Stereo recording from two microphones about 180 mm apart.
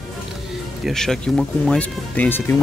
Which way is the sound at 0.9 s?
Centre (ahead or behind).